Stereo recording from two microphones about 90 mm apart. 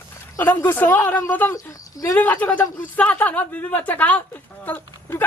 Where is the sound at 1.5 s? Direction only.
40° left (ahead or behind).